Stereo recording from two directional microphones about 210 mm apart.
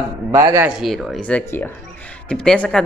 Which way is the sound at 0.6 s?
Centre (ahead or behind).